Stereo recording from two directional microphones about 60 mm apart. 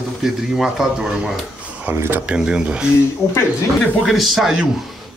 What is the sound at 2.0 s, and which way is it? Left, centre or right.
Speech, right.